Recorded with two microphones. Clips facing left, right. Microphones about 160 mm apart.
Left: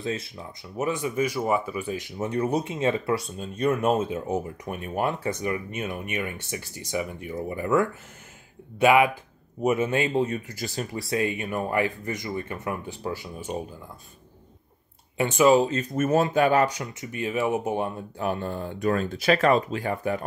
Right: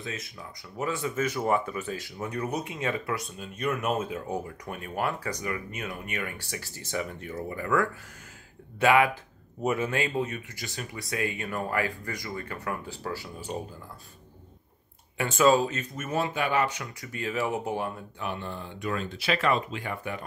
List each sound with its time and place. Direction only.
0.0 s speech: 30° left (ahead or behind)
15.1 s speech: 15° left (ahead or behind)
15.6 s speech: 30° left (ahead or behind)
15.9 s speech: 45° left (ahead or behind)
17.0 s speech: 20° left (ahead or behind)
18.2 s speech: 45° left (ahead or behind)